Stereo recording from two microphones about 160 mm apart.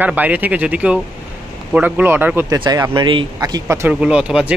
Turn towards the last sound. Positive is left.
turn(degrees=-5)  # may be behind; listen again after turning